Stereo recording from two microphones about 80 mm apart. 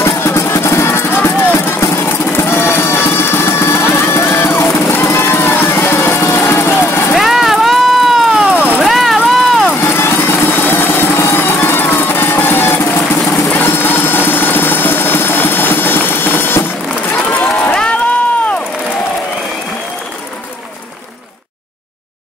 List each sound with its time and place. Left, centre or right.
0.0 s music: left
7.2 s run: centre
8.5 s vehicle: centre
8.8 s run: centre
9.8 s vehicle: left
13.6 s a sound: left
17.3 s run: left